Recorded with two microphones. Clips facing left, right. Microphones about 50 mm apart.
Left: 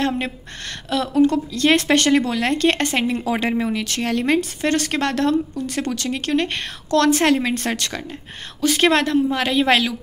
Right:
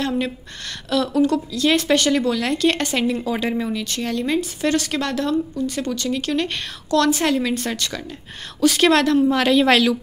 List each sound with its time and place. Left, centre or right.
0.8 s a woman's voice: left
3.7 s speech: left
8.5 s a woman's voice: left